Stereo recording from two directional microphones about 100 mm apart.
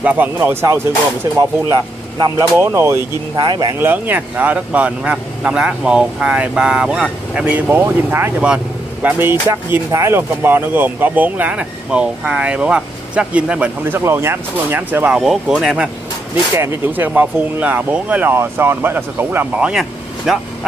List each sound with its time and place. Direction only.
0.0 s speech: 15° right (ahead or behind)
0.4 s speech: 25° right (ahead or behind)
1.4 s speech: 40° right (ahead or behind)
2.6 s speech: 25° right (ahead or behind)
3.3 s speech: 50° right (ahead or behind)
3.8 s speech: 20° right (ahead or behind)
13.9 s speech: 25° right (ahead or behind); by 15.9 s 5° right (ahead or behind)
16.5 s speech: 20° right (ahead or behind)
19.7 s vehicle: 5° right (ahead or behind)